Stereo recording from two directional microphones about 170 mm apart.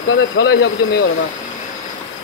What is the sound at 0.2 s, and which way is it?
Speech, 70° left (ahead or behind).